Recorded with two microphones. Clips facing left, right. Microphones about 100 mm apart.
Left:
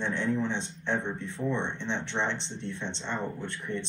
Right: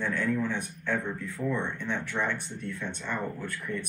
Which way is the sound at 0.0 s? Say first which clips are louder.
Even; 25° left (ahead or behind).